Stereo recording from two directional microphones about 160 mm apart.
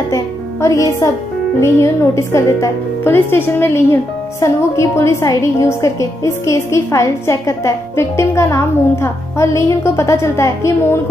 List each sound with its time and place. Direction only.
0.1 s a woman's voice: 20° left (ahead or behind)